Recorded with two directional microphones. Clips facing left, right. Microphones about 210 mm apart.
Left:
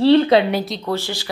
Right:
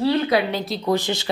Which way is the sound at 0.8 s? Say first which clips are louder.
Right 2 dB; 15° right (ahead or behind).